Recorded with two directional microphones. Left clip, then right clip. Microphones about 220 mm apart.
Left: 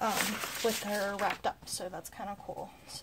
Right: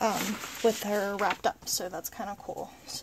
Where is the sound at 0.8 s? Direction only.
40° right (ahead or behind).